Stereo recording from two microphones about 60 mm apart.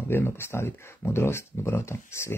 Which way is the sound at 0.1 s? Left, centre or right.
Left.